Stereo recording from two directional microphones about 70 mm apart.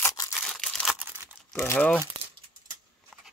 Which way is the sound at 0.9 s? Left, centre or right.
Right.